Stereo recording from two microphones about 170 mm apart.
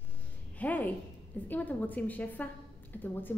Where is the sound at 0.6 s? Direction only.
10° left (ahead or behind).